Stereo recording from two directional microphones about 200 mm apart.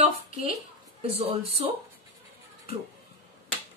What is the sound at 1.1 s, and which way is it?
Speech, 30° right (ahead or behind).